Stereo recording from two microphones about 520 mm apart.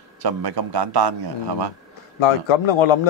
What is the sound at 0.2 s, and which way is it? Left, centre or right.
A man's voice, right.